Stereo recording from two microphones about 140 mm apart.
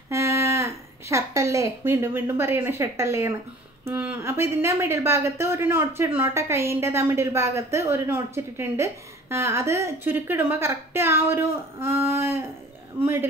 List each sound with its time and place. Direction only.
0.1 s speech: 20° right (ahead or behind)